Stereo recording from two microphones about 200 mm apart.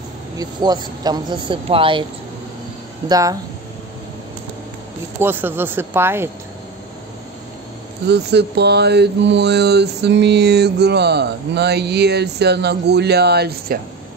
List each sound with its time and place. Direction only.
0.4 s speech: 20° right (ahead or behind)
3.1 s speech: 15° right (ahead or behind)
5.2 s speech: 10° right (ahead or behind)
8.1 s mantra: 55° right (ahead or behind)